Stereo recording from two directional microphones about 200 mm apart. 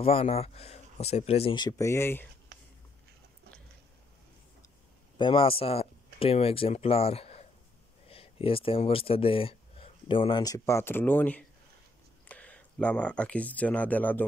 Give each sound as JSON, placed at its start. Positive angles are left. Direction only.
{"t": 0.0, "sound": "speech", "side_deg": 30}
{"t": 5.1, "sound": "speech", "side_deg": 25}